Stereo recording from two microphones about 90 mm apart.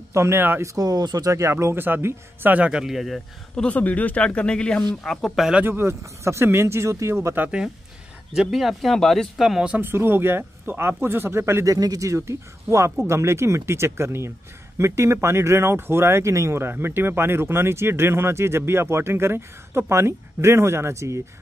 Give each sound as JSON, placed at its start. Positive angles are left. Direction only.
{"t": 0.1, "sound": "speech", "side_deg": -30}
{"t": 0.7, "sound": "speech", "side_deg": -45}
{"t": 2.5, "sound": "speech", "side_deg": -10}
{"t": 3.6, "sound": "speech", "side_deg": 15}
{"t": 5.6, "sound": "speech", "side_deg": -25}
{"t": 8.4, "sound": "speech", "side_deg": -5}
{"t": 9.8, "sound": "speech", "side_deg": -25}